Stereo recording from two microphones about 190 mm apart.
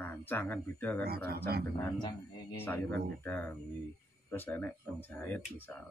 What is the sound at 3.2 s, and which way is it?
Speech, 10° left (ahead or behind).